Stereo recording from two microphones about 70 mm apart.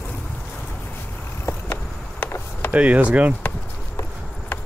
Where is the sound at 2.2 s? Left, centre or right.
Left.